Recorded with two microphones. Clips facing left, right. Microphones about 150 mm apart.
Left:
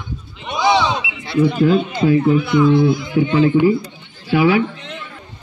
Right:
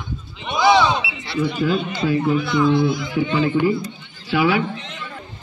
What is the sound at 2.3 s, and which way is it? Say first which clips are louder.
Speech: left 4 dB; 15° left (ahead or behind).